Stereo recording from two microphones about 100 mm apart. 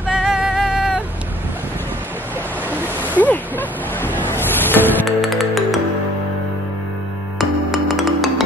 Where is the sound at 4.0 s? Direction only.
20° left (ahead or behind).